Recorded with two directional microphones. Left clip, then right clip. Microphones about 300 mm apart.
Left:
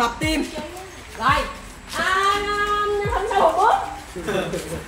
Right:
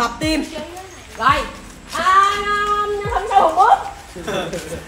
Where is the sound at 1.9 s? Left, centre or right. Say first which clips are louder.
Right 6 dB; centre.